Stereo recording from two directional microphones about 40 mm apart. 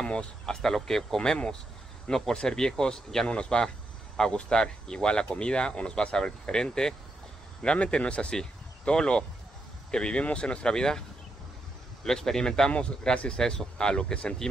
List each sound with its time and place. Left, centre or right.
0.0 s speech: left
7.6 s speech: left